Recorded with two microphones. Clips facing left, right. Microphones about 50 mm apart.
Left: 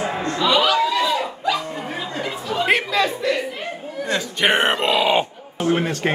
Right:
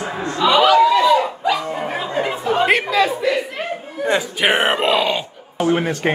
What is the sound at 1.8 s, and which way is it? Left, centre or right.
Music, right.